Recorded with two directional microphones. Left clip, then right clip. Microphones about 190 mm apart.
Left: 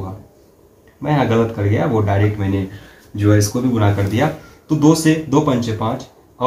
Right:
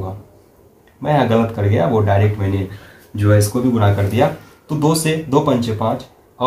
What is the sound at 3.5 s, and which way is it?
Speech, 30° right (ahead or behind).